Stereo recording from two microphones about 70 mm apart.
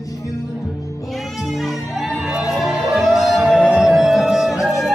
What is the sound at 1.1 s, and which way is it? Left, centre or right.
Music, centre.